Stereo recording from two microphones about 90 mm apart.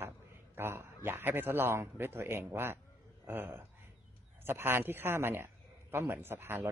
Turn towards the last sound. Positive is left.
turn(degrees=-20)  # may be behind; listen again after turning